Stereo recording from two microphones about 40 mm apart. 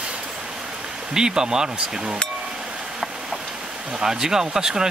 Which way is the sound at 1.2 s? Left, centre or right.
Centre.